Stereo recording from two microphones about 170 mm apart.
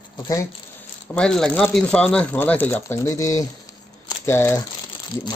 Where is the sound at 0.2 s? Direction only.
20° left (ahead or behind).